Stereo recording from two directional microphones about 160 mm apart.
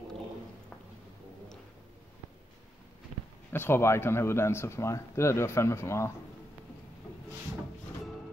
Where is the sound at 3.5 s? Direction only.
15° left (ahead or behind).